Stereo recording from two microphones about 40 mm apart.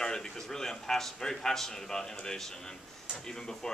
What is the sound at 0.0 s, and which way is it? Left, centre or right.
A man's voice, centre.